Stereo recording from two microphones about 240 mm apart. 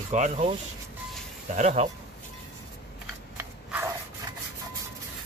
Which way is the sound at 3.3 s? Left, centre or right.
Centre.